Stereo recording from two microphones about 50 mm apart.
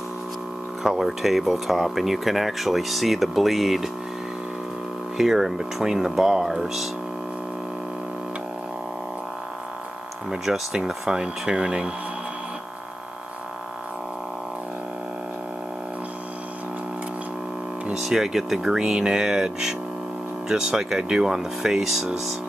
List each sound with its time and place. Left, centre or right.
0.8 s speech: centre
5.1 s speech: centre
10.3 s speech: centre
17.9 s speech: centre